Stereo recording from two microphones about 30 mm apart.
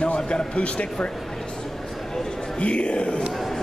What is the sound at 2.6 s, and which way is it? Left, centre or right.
Music, left.